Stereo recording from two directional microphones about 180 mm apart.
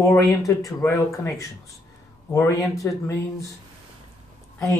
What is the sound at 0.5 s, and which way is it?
Speech, 20° left (ahead or behind).